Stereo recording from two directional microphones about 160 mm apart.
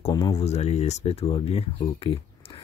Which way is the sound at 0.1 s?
20° left (ahead or behind).